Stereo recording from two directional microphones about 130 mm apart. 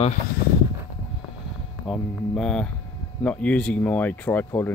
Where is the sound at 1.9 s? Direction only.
5° left (ahead or behind).